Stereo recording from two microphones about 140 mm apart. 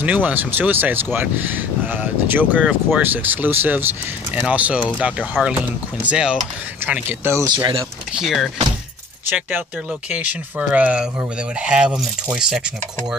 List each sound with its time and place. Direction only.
0.0 s speech: 10° right (ahead or behind)
7.4 s speech: 35° right (ahead or behind)
8.1 s speech: centre (ahead or behind)